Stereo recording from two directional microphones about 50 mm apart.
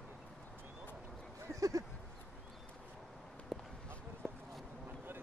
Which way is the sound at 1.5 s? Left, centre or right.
Right.